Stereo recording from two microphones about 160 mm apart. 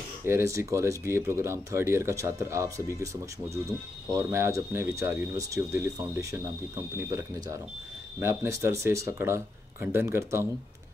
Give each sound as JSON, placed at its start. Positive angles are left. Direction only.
{"t": 0.2, "sound": "speech", "side_deg": -15}
{"t": 4.1, "sound": "speech", "side_deg": -15}